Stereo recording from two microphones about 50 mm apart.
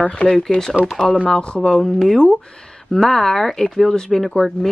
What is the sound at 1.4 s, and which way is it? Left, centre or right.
Speech, centre.